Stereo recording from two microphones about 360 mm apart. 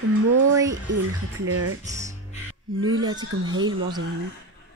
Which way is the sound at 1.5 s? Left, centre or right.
Right.